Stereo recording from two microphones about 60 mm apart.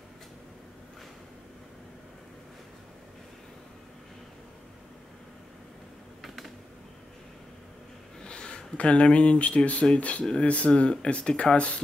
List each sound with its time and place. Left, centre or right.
6.2 s computer keyboard: centre
8.2 s speech: centre